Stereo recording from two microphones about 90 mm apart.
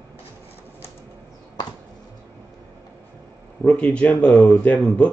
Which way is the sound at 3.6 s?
15° left (ahead or behind).